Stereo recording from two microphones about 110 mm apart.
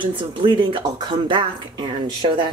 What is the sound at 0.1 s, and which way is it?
Speech, 50° right (ahead or behind).